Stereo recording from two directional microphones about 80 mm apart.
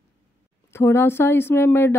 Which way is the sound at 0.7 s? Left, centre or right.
Left.